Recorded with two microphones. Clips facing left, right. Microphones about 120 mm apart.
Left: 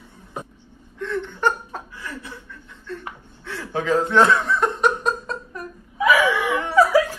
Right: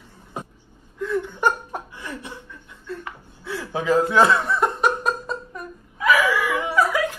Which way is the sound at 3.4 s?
5° right (ahead or behind).